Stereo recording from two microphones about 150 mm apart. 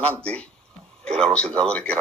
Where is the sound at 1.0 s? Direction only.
45° right (ahead or behind).